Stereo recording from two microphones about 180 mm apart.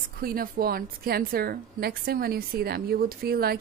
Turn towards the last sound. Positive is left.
turn(degrees=-60)  # may be behind; listen again after turning